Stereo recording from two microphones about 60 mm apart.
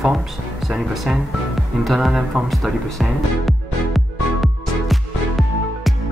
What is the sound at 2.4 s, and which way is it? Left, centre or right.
Speech, centre.